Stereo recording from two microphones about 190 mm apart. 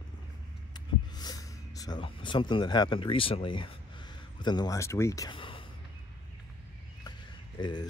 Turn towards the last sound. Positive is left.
turn(degrees=25)  # may be behind; listen again after turning